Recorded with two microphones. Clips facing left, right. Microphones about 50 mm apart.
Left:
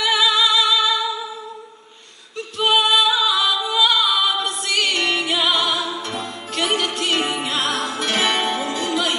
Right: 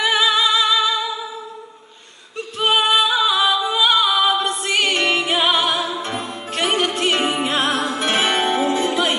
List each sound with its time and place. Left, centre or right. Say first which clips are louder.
0.0 s music: right 1 dB; right
2.6 s music: even; right